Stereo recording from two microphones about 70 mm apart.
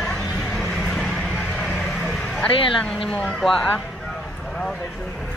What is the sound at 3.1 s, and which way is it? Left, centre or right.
Speech, centre.